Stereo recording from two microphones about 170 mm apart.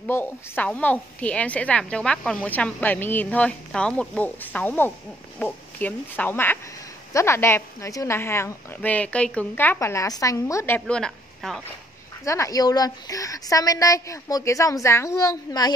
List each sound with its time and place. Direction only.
0.1 s a woman's voice: 10° left (ahead or behind)
12.3 s a woman's voice: 20° left (ahead or behind)